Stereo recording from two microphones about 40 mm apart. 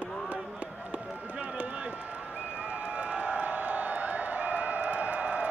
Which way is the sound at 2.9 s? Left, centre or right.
Right.